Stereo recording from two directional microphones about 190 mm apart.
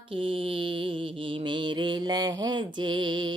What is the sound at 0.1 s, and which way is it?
Mantra, 25° right (ahead or behind).